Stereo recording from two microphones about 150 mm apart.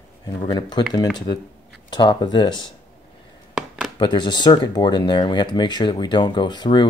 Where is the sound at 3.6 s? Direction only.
5° right (ahead or behind).